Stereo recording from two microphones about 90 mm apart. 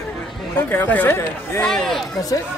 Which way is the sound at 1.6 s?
5° left (ahead or behind).